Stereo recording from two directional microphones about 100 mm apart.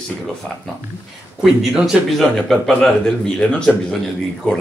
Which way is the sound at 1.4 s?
5° right (ahead or behind).